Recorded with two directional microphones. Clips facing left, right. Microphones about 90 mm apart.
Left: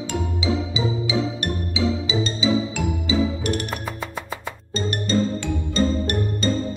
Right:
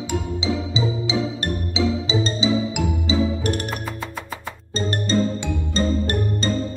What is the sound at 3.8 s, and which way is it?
Music, centre (ahead or behind).